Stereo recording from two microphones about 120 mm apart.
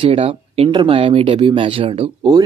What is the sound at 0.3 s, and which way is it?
Speech, 45° right (ahead or behind).